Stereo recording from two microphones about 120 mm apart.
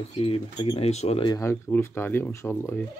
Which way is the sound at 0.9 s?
65° left (ahead or behind).